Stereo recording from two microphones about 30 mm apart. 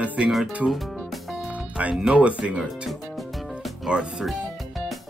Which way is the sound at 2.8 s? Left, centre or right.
Centre.